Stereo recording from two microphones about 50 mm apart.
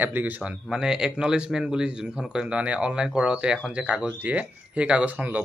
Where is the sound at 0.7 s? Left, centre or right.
Centre.